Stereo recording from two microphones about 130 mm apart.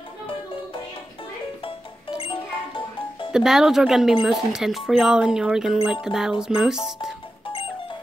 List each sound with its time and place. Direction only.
1.6 s music: 45° left (ahead or behind)
3.3 s speech: 5° right (ahead or behind)
7.4 s music: 40° left (ahead or behind)